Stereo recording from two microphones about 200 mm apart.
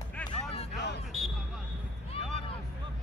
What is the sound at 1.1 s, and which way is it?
Basketball bounce, 5° right (ahead or behind).